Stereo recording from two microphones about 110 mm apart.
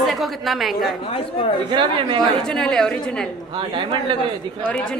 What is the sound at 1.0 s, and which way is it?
Speech, 60° left (ahead or behind).